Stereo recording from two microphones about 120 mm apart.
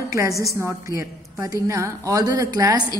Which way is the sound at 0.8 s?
30° right (ahead or behind).